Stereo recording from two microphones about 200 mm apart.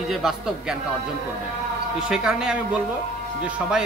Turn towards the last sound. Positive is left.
turn(degrees=-5)  # may be behind; listen again after turning